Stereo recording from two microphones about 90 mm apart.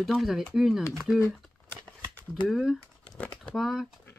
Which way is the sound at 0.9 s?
5° left (ahead or behind).